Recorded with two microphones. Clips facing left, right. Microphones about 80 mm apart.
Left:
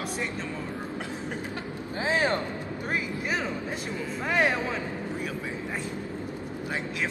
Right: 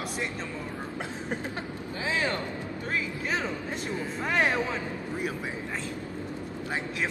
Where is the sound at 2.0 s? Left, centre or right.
Left.